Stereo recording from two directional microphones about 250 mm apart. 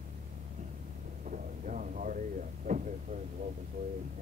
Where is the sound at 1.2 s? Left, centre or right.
Right.